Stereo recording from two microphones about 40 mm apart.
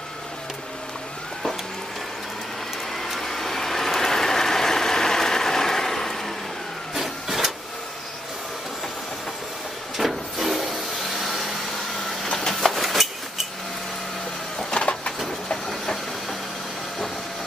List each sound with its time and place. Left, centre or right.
3.0 s vehicle: centre
6.9 s vehicle: centre
9.9 s a sound: centre
12.5 s hammer: centre
14.7 s vehicle: left
15.6 s steam: centre